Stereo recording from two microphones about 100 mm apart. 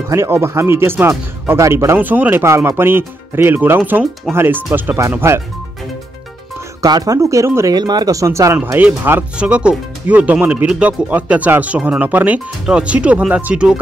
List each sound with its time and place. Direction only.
0.1 s speech: 25° right (ahead or behind)
6.8 s speech: 35° right (ahead or behind)
7.7 s speech: 45° right (ahead or behind)
8.7 s speech: 20° right (ahead or behind)